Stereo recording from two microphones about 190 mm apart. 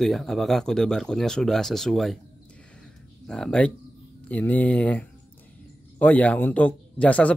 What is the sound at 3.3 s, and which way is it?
A man's voice, 5° left (ahead or behind).